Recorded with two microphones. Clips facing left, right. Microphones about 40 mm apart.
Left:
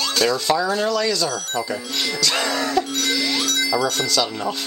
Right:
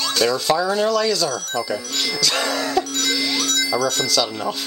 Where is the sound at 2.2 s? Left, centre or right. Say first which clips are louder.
Even; centre.